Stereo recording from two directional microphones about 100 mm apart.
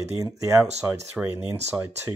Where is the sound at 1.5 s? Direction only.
20° right (ahead or behind).